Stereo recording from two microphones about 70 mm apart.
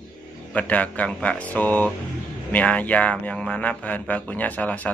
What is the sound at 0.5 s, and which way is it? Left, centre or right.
Speech, left.